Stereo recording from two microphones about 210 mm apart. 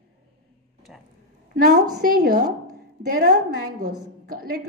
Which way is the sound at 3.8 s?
45° right (ahead or behind).